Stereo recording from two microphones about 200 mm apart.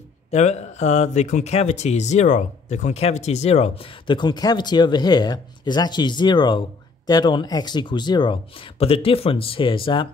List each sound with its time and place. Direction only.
0.3 s speech: 35° left (ahead or behind)